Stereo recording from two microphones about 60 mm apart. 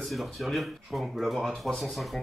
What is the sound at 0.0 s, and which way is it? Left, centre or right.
Speech, centre.